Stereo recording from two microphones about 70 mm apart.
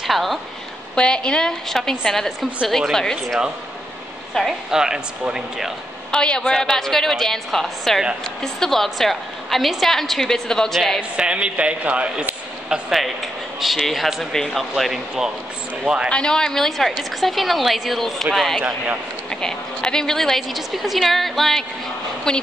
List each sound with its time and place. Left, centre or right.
0.0 s a woman's voice: centre
0.9 s a woman's voice: centre
6.1 s a woman's voice: centre
11.0 s a man's voice: centre
12.9 s a woman's voice: centre
16.1 s a woman's voice: centre